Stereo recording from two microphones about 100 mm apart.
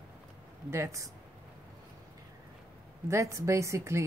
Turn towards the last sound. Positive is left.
turn(degrees=-30)  # may be behind; listen again after turning